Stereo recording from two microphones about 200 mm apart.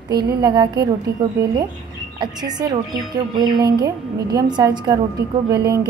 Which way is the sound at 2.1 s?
20° right (ahead or behind).